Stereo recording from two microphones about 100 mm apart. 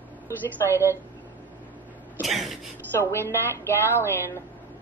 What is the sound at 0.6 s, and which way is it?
Speech, 30° left (ahead or behind).